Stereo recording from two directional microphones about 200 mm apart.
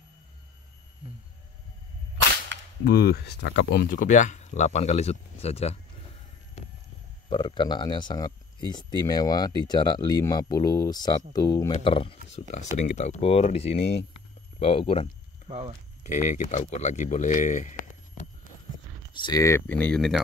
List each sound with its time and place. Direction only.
2.8 s speech: 50° left (ahead or behind); by 5.8 s 30° left (ahead or behind)
7.2 s speech: 25° left (ahead or behind)
15.4 s speech: 30° right (ahead or behind)
16.0 s speech: 35° left (ahead or behind)
19.1 s speech: 20° left (ahead or behind); by 20.2 s 5° left (ahead or behind)